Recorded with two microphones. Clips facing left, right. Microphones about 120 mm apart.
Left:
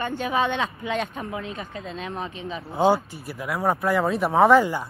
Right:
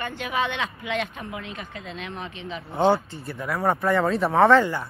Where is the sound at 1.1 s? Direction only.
30° left (ahead or behind).